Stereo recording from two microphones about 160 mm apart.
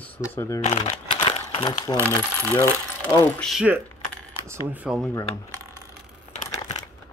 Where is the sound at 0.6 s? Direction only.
40° left (ahead or behind).